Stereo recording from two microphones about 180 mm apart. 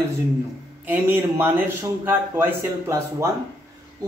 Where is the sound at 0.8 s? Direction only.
10° right (ahead or behind).